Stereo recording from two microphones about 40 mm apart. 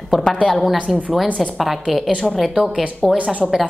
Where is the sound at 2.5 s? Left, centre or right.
Centre.